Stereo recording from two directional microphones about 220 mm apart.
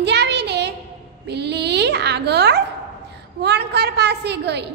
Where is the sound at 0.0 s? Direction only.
50° right (ahead or behind).